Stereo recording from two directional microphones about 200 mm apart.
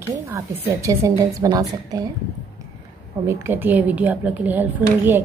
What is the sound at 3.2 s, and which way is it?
A woman's voice, 10° right (ahead or behind).